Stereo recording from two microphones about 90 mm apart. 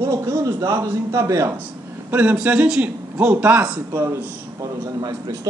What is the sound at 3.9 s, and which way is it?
Speech, 35° right (ahead or behind).